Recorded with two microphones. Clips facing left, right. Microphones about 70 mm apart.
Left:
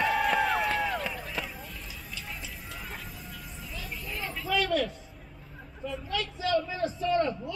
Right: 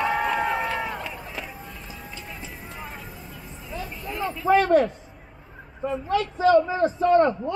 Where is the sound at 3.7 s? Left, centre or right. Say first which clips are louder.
Right 7 dB; right.